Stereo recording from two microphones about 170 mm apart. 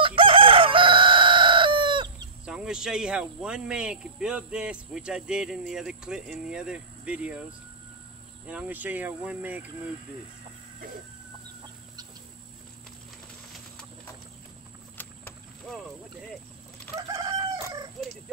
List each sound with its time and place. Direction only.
0.0 s chicken: 30° right (ahead or behind)
2.4 s speech: 5° right (ahead or behind)
8.5 s speech: 10° right (ahead or behind)
15.0 s boat: 10° left (ahead or behind)
16.9 s chicken: 20° right (ahead or behind)